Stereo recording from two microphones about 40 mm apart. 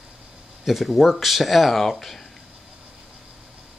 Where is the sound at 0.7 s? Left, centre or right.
Centre.